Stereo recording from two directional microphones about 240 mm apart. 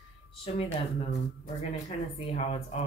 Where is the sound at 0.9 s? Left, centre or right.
Left.